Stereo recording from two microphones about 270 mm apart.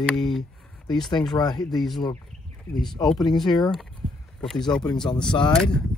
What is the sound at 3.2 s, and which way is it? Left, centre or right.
Speech, centre.